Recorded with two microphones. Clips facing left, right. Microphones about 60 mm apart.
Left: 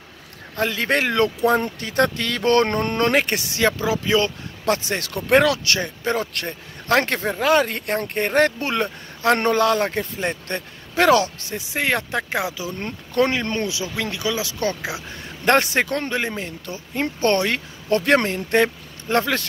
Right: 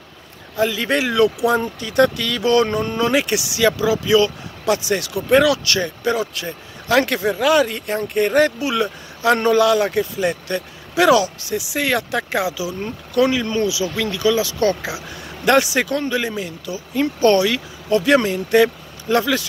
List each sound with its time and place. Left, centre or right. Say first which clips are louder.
0.6 s speech: right 2 dB; left
5.5 s speech: right 3 dB; left
6.1 s speech: right 2 dB; left
6.9 s speech: right 3 dB; left
12.8 s speech: right 3 dB; left
13.9 s speech: right 6 dB; left
15.4 s speech: right 2 dB; left